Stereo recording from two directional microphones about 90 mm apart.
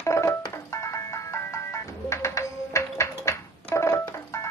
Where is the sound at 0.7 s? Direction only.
35° left (ahead or behind).